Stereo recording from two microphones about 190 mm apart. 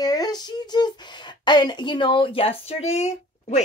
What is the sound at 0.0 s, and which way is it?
Speech, 20° left (ahead or behind).